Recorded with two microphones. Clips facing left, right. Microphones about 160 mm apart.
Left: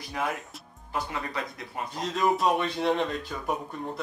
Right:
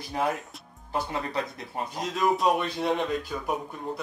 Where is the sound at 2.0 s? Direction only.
Centre (ahead or behind).